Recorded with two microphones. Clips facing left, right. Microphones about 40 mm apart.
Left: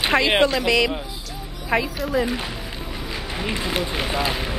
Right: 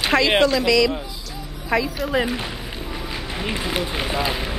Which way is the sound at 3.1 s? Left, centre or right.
Centre.